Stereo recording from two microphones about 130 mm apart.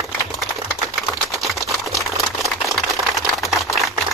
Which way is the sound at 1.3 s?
Centre (ahead or behind).